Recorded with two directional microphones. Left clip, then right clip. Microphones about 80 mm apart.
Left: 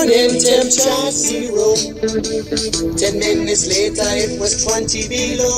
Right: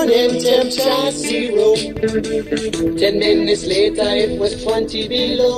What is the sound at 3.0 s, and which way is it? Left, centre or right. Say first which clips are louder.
Music: right 3 dB; right.